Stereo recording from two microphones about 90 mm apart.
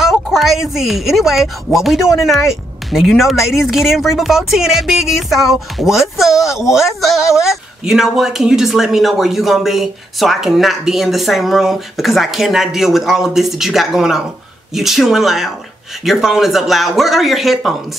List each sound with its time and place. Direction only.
0.0 s speech: 5° right (ahead or behind)